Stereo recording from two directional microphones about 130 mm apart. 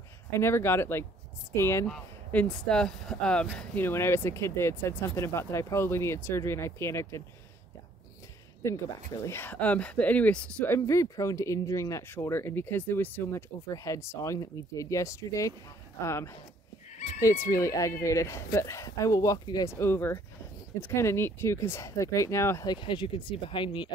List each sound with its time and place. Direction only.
0.4 s speech: 20° left (ahead or behind)
1.9 s speech: 5° left (ahead or behind); by 7.2 s 20° left (ahead or behind)
8.6 s speech: 20° left (ahead or behind)
10.8 s speech: 25° left (ahead or behind)
19.7 s speech: 20° left (ahead or behind)
22.8 s speech: 40° left (ahead or behind)